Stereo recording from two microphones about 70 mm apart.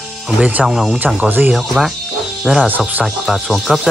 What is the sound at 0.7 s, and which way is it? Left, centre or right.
Speech, centre.